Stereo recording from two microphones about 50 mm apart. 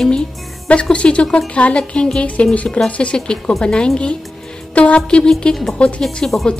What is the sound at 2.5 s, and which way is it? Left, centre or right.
A woman's voice, left.